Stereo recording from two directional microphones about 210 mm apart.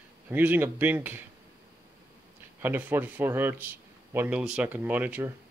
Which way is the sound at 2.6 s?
10° right (ahead or behind).